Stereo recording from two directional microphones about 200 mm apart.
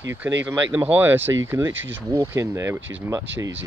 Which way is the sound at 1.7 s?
70° right (ahead or behind).